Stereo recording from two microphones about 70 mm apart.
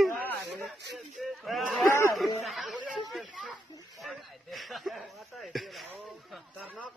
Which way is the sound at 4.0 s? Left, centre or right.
Centre.